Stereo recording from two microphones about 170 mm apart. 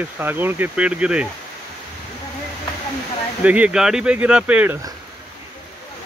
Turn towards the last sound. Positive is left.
turn(degrees=-10)  # may be behind; listen again after turning